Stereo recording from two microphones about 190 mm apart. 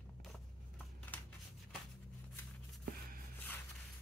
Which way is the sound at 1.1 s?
10° left (ahead or behind).